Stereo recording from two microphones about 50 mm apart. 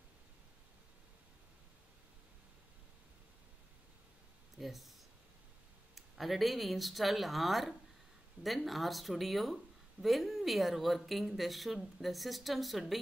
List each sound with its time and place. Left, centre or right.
4.6 s speech: centre
5.9 s speech: centre